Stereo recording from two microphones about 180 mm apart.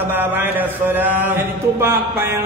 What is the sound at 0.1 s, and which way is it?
Speech, 10° right (ahead or behind).